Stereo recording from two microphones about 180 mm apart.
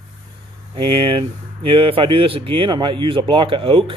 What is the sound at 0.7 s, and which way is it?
Speech, 30° right (ahead or behind).